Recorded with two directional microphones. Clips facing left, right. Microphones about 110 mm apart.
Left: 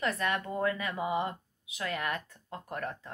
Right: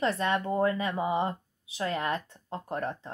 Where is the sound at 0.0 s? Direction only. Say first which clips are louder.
Right 4 dB; 30° right (ahead or behind).